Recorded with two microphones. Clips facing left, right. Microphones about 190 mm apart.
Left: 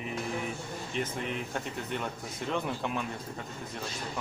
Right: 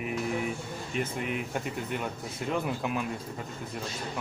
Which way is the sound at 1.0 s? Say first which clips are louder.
Right 2 dB; 10° right (ahead or behind).